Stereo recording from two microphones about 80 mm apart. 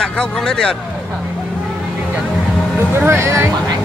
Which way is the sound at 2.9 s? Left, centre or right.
Right.